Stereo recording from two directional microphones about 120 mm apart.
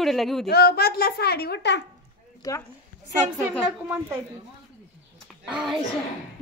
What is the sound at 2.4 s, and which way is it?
Speech, 25° left (ahead or behind).